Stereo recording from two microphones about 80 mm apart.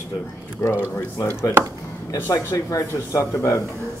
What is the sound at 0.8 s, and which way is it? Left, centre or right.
Speech, left.